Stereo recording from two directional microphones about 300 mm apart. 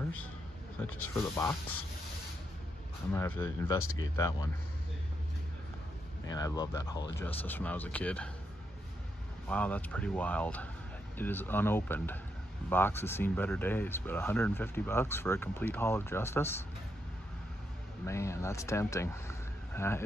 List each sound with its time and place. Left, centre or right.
0.8 s speech: left
1.1 s speech: centre
3.1 s speech: centre
3.8 s speech: left
6.3 s speech: centre
9.5 s speech: centre
18.0 s speech: centre